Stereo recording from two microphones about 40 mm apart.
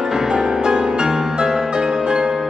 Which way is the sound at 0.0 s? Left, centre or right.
Centre.